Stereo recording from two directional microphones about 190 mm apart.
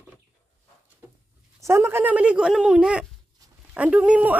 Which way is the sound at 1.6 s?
15° right (ahead or behind).